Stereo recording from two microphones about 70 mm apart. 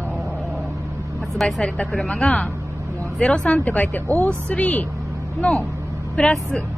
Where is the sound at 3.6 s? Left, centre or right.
Left.